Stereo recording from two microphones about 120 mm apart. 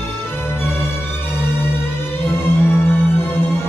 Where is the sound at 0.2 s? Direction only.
20° left (ahead or behind).